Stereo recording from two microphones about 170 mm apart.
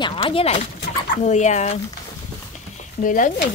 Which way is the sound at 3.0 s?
55° left (ahead or behind).